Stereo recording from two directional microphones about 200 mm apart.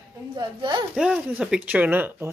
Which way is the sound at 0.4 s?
25° right (ahead or behind).